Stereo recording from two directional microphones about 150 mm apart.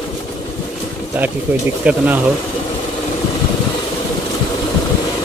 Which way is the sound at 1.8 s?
10° right (ahead or behind).